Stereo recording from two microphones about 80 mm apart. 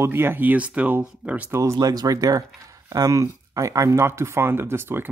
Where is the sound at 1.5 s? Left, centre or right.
Right.